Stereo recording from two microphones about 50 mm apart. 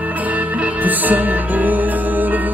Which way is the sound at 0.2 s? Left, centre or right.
Right.